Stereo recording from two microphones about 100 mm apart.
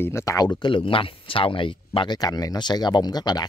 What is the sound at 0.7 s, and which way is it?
Speech, 60° left (ahead or behind).